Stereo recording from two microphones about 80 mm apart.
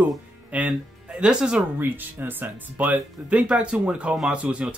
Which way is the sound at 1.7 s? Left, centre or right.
Right.